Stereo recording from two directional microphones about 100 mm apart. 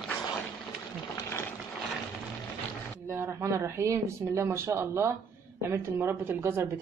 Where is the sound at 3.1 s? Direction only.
25° right (ahead or behind).